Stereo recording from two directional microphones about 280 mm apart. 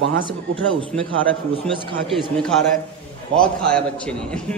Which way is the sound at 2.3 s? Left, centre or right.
Centre.